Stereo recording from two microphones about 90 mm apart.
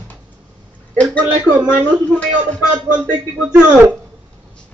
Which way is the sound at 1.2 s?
15° right (ahead or behind).